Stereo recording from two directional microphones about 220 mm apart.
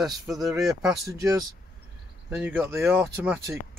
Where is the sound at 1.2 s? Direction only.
15° right (ahead or behind).